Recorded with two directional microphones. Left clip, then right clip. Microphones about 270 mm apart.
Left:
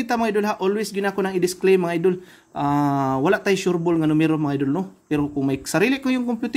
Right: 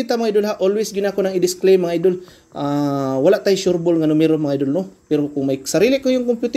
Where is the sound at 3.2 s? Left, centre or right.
Centre.